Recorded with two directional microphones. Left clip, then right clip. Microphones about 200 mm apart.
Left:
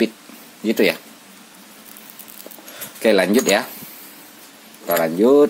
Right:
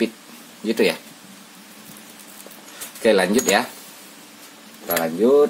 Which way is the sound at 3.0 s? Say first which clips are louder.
Left 2 dB; 35° left (ahead or behind).